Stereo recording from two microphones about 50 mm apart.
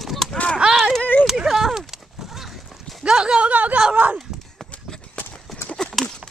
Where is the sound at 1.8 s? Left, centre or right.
Centre.